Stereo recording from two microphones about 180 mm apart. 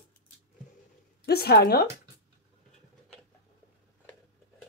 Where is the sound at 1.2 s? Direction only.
60° left (ahead or behind).